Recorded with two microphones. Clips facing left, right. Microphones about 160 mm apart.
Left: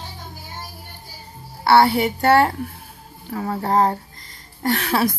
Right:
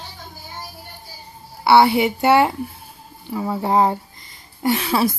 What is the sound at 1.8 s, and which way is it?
A woman's voice, 15° right (ahead or behind).